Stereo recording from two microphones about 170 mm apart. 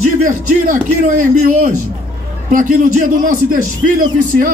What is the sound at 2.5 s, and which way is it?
Speech, 50° right (ahead or behind).